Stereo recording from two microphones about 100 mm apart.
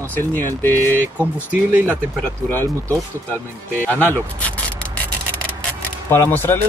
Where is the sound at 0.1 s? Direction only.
20° left (ahead or behind).